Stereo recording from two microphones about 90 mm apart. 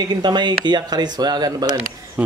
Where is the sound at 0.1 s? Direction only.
55° right (ahead or behind).